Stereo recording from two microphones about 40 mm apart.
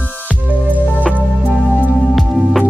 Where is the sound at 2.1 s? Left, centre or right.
Centre.